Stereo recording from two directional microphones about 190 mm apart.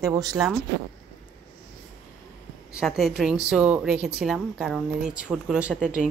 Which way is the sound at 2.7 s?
Centre (ahead or behind).